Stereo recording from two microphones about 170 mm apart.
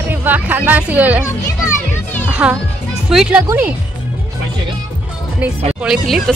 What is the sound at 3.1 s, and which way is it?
Speech, centre (ahead or behind).